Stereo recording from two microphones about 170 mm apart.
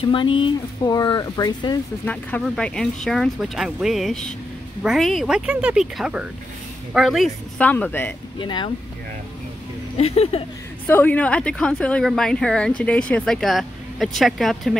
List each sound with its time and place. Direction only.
0.0 s speech: 30° left (ahead or behind)
2.0 s speech: 5° left (ahead or behind)
8.4 s speech: 30° left (ahead or behind)
9.9 s speech: 35° left (ahead or behind)
10.9 s speech: 10° left (ahead or behind)